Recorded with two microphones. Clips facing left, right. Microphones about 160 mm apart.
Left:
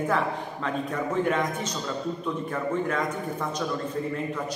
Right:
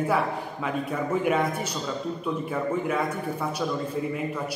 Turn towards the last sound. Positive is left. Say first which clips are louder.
# right 1 dB
turn(degrees=-10)  # may be behind; listen again after turning